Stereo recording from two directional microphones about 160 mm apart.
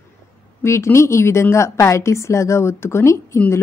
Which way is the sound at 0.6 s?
15° left (ahead or behind).